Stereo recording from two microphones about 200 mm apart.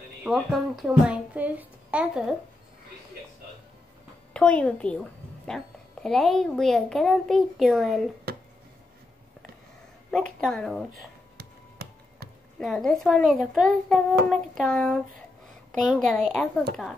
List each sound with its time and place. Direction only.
0.2 s a child's voice: centre (ahead or behind)
4.3 s a woman's voice: 5° left (ahead or behind)
10.4 s a child's voice: centre (ahead or behind)
11.3 s a sound: 50° right (ahead or behind)
12.5 s a child's voice: 5° left (ahead or behind)